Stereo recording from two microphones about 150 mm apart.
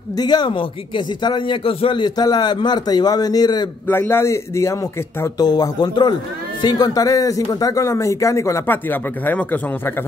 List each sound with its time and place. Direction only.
0.2 s a man's voice: 30° left (ahead or behind)
3.8 s a man's voice: 15° left (ahead or behind)